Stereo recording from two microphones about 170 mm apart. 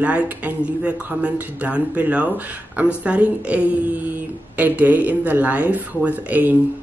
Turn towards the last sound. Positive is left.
turn(degrees=-10)  # may be behind; listen again after turning